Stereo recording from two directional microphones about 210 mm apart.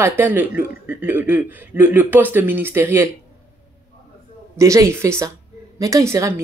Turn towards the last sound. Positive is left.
turn(degrees=-15)  # may be behind; listen again after turning